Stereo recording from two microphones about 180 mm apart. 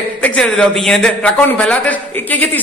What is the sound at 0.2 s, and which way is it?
A man's voice, 5° left (ahead or behind).